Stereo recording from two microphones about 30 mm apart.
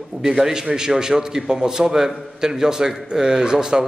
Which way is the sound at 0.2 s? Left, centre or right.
Centre.